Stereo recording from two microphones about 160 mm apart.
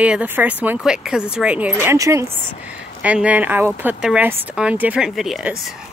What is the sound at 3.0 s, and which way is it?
Speech, 10° right (ahead or behind).